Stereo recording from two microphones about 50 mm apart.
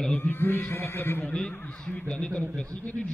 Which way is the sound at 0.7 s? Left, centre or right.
Left.